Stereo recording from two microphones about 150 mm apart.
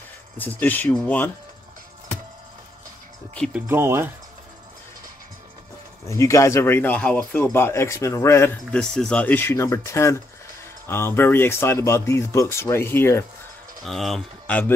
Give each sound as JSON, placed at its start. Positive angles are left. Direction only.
{"t": 0.4, "sound": "speech", "side_deg": 10}
{"t": 3.5, "sound": "speech", "side_deg": -15}
{"t": 6.0, "sound": "speech", "side_deg": 20}
{"t": 8.7, "sound": "speech", "side_deg": 5}
{"t": 13.8, "sound": "speech", "side_deg": 0}